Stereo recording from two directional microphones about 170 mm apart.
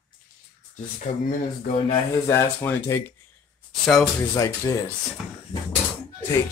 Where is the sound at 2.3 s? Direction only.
15° left (ahead or behind).